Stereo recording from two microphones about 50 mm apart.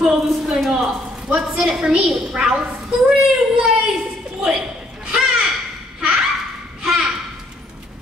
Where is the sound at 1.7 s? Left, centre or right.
Centre.